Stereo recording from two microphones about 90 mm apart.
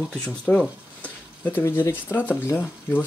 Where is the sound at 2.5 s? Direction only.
20° left (ahead or behind).